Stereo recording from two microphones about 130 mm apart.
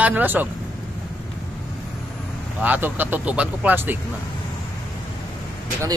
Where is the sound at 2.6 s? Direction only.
15° right (ahead or behind).